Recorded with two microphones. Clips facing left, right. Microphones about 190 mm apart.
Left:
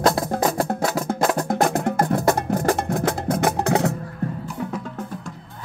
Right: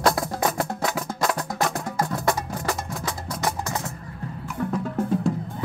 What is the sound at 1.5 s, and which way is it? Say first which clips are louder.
Music: left 6 dB; 55° left (ahead or behind).